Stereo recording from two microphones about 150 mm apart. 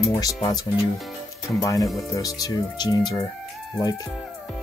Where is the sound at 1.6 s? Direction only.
20° left (ahead or behind).